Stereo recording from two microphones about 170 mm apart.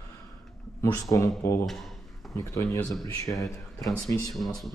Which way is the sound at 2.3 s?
20° left (ahead or behind).